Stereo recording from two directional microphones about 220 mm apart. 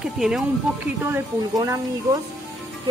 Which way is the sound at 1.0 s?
10° right (ahead or behind).